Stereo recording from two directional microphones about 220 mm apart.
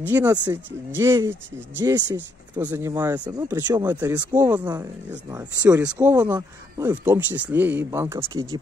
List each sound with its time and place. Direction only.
0.0 s speech: 10° right (ahead or behind)